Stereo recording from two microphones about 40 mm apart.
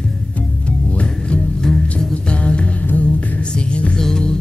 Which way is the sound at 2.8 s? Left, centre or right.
Left.